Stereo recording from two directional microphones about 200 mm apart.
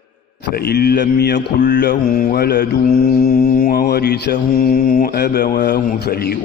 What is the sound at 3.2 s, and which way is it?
Mantra, 40° left (ahead or behind).